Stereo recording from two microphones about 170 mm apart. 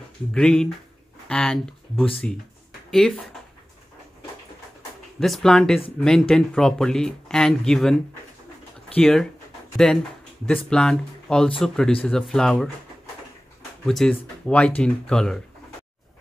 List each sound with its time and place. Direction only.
0.3 s speech: 5° left (ahead or behind)
5.2 s speech: centre (ahead or behind)
13.8 s speech: 5° left (ahead or behind)